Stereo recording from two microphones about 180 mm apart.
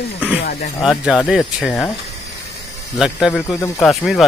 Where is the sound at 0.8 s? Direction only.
Centre (ahead or behind).